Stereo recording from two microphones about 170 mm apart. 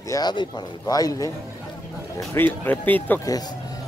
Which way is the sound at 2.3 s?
10° left (ahead or behind).